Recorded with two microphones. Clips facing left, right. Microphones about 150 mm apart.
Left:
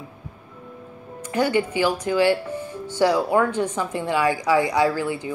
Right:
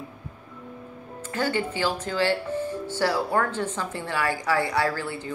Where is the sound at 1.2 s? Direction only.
15° left (ahead or behind).